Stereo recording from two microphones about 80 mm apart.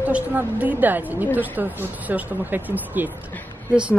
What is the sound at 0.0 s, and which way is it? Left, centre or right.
Speech, right.